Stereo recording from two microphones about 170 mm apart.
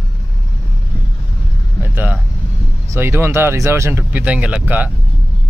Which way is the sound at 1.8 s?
10° right (ahead or behind).